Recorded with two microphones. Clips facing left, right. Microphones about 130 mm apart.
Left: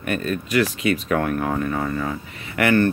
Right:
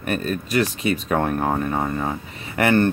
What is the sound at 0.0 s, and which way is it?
Speech, 35° right (ahead or behind).